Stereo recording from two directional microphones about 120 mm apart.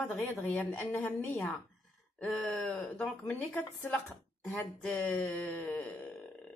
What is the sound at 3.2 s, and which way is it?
Speech, 25° left (ahead or behind).